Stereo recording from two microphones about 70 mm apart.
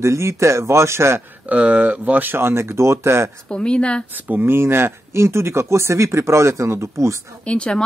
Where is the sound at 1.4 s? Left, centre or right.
Right.